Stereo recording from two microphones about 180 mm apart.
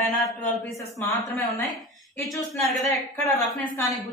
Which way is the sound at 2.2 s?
Centre (ahead or behind).